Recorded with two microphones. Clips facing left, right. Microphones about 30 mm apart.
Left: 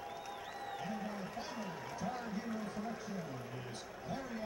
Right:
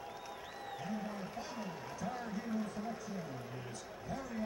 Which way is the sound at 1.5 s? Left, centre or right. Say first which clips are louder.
Even; centre.